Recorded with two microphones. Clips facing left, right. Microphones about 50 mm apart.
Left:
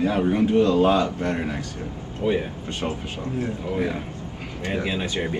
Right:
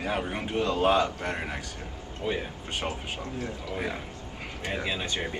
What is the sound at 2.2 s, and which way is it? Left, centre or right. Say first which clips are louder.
Speech: left 8 dB; centre.